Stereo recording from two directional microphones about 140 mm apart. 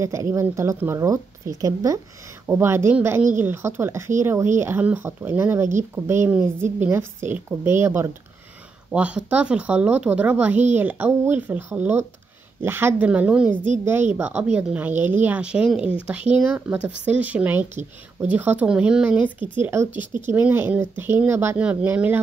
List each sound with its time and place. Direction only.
0.0 s speech: 20° right (ahead or behind)